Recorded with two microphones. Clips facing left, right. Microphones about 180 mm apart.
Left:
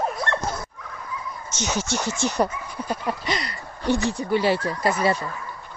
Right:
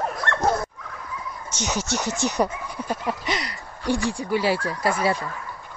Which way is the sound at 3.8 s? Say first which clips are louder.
Left 1 dB; 20° left (ahead or behind).